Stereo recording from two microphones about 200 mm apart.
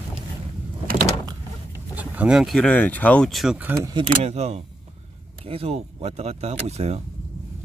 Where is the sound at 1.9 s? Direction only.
5° right (ahead or behind).